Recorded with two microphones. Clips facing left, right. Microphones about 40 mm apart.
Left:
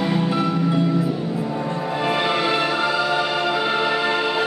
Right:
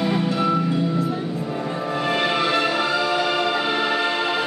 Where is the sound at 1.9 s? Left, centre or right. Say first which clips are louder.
Even; centre.